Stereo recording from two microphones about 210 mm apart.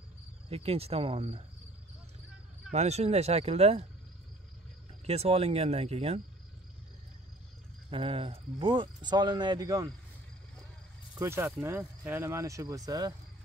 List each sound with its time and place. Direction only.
0.5 s speech: 30° right (ahead or behind)
2.7 s speech: 30° right (ahead or behind)
5.0 s speech: 30° right (ahead or behind)
7.9 s speech: 25° right (ahead or behind)
11.1 s speech: 10° right (ahead or behind)